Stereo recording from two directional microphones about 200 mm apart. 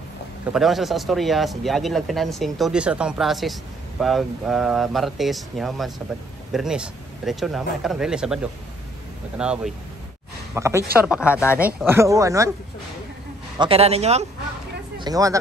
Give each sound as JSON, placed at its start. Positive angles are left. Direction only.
{"t": 0.5, "sound": "speech", "side_deg": 0}
{"t": 13.6, "sound": "a man's voice", "side_deg": -30}
{"t": 15.0, "sound": "speech", "side_deg": -20}